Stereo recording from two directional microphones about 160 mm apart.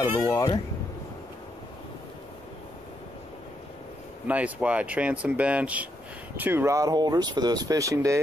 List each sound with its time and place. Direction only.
0.3 s speech: 25° left (ahead or behind)
4.3 s speech: 10° right (ahead or behind)